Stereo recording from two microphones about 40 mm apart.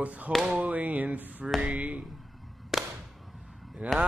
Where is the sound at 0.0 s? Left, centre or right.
Right.